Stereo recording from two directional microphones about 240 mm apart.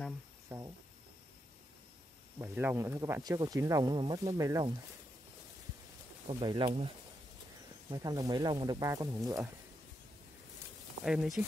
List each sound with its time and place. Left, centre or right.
0.5 s speech: centre
2.3 s speech: centre
6.2 s speech: right
7.9 s speech: centre
11.1 s speech: centre